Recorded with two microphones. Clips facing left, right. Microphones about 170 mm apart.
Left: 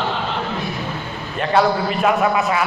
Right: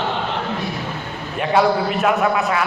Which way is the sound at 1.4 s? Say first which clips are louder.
Even; 5° right (ahead or behind).